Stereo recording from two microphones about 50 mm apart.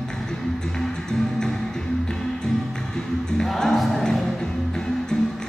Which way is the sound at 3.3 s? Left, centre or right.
Centre.